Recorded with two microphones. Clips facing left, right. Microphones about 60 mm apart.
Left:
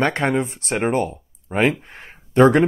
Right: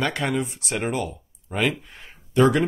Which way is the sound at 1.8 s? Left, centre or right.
Left.